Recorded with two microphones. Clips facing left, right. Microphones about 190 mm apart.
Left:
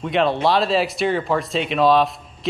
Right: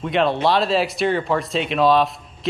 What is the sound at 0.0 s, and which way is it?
Speech, centre (ahead or behind).